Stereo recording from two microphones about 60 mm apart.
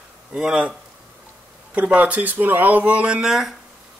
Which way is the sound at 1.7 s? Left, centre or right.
Right.